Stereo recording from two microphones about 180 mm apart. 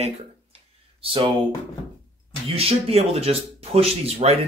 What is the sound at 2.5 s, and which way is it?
Speech, 35° right (ahead or behind).